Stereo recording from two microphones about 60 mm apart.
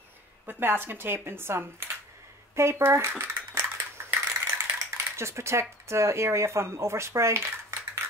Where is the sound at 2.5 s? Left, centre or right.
Right.